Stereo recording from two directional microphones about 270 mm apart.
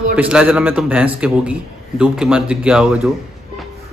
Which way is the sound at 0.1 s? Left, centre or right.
Centre.